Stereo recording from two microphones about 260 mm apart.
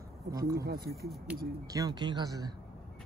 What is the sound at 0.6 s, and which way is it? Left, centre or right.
Speech, right.